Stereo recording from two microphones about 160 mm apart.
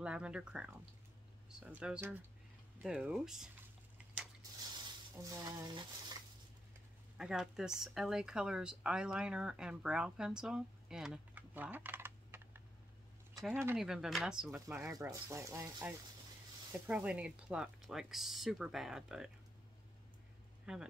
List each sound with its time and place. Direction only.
0.0 s speech: 5° right (ahead or behind)
4.4 s a sound: 25° right (ahead or behind)
7.2 s speech: 5° right (ahead or behind)
13.7 s speech: 5° right (ahead or behind)
15.0 s speech: 20° right (ahead or behind); by 19.3 s 5° right (ahead or behind)
20.7 s speech: 5° right (ahead or behind)